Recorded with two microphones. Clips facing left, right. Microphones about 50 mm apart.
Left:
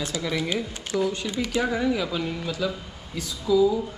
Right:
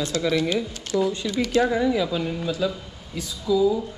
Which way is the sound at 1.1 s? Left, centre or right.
Left.